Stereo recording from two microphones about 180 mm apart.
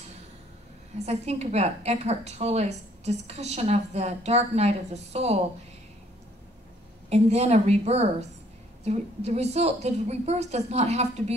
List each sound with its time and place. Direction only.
0.9 s a woman's voice: 35° right (ahead or behind)
7.1 s a woman's voice: 35° right (ahead or behind)